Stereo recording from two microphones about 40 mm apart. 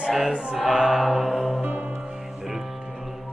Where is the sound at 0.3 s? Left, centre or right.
Centre.